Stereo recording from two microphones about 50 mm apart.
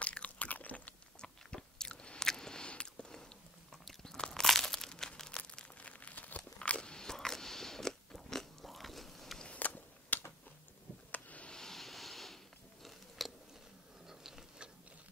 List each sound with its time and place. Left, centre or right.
0.0 s chewing: left
1.2 s biting: centre
3.7 s crunch: centre
5.8 s biting: left; by 9.4 s centre
9.4 s a sound: left
11.5 s vehicle: centre
13.2 s chewing: centre
14.0 s a sound: centre